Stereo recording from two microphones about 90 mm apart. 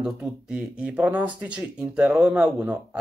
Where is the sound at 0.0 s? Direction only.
10° right (ahead or behind).